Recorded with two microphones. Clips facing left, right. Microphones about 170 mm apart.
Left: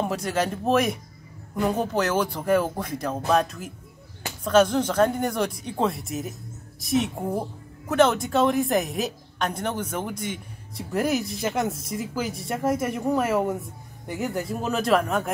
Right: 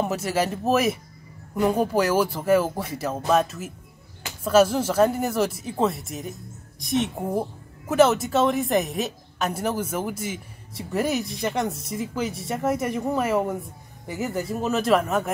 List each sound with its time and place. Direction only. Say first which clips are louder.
0.0 s a woman's voice: right 1 dB; 5° right (ahead or behind)